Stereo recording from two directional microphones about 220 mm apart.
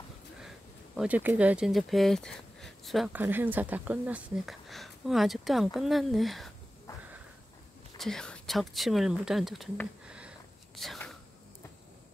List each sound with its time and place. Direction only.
0.9 s speech: 5° right (ahead or behind)
8.0 s speech: centre (ahead or behind)